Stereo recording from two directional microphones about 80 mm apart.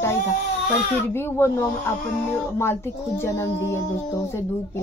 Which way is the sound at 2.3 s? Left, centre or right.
Left.